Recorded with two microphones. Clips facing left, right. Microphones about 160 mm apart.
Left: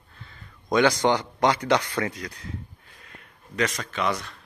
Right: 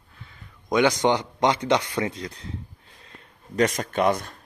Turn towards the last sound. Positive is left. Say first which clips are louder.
# right 5 dB
turn(degrees=-50)  # may be behind; listen again after turning